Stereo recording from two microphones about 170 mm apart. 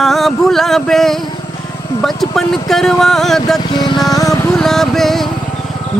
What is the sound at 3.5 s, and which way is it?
Music, 25° left (ahead or behind).